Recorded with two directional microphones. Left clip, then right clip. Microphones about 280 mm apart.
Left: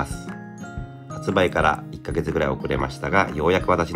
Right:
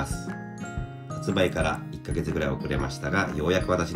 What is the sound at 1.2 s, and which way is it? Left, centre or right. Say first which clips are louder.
Speech: left 6 dB; centre.